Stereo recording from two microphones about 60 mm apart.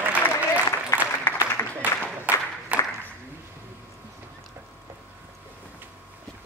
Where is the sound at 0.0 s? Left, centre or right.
Right.